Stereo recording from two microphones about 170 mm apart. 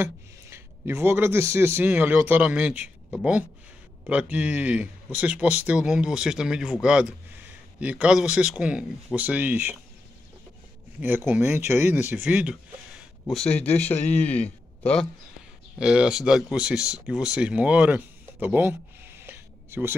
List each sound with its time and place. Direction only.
0.0 s speech: 15° right (ahead or behind)
11.0 s speech: 10° right (ahead or behind); by 15.0 s 5° left (ahead or behind)
15.8 s speech: 5° right (ahead or behind)